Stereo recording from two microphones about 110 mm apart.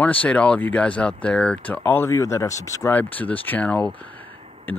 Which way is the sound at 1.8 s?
20° left (ahead or behind).